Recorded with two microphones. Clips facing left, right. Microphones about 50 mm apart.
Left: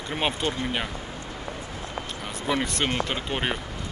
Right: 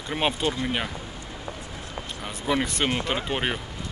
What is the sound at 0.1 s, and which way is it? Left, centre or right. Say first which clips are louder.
Speech: right 2 dB; centre.